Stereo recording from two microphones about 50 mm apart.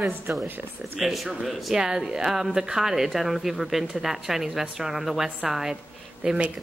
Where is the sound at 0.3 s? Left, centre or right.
Right.